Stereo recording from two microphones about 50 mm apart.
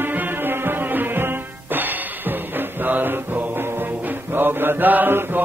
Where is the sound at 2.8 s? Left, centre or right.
Right.